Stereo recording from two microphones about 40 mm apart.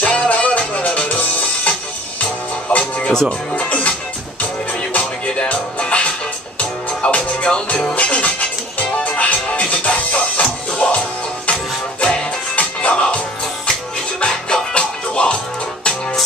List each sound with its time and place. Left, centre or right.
0.0 s music: left
2.8 s music: centre
3.5 s music: left
12.0 s music: left
14.2 s music: left